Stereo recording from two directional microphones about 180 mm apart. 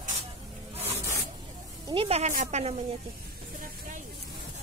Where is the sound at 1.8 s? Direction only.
30° right (ahead or behind).